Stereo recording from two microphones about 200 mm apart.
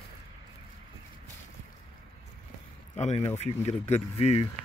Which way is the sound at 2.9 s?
35° left (ahead or behind).